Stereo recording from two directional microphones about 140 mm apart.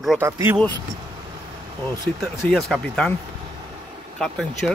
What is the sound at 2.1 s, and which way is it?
Speech, centre (ahead or behind).